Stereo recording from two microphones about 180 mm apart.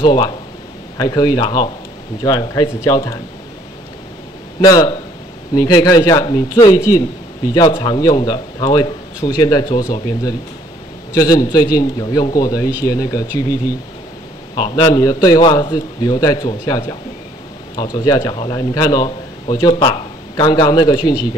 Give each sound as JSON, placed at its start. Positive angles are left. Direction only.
{"t": 0.0, "sound": "a man's voice", "side_deg": 25}
{"t": 4.6, "sound": "a man's voice", "side_deg": 20}
{"t": 17.9, "sound": "a man's voice", "side_deg": 20}